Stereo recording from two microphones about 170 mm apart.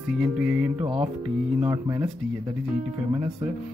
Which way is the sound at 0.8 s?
20° right (ahead or behind).